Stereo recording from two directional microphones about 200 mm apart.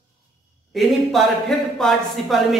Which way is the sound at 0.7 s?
Centre (ahead or behind).